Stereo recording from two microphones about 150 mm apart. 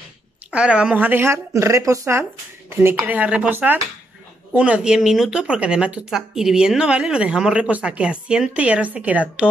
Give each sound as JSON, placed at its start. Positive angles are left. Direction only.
{"t": 0.5, "sound": "speech", "side_deg": -10}